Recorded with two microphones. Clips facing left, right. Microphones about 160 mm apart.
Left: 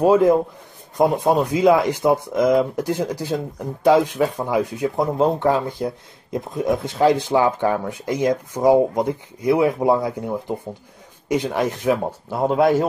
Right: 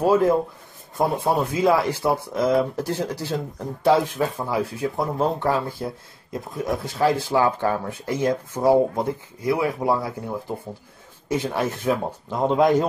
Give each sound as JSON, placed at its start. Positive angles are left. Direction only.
{"t": 0.0, "sound": "speech", "side_deg": 15}